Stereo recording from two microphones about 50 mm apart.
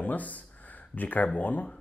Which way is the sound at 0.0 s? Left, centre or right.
Left.